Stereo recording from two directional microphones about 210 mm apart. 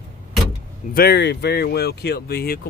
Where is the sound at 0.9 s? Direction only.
50° left (ahead or behind).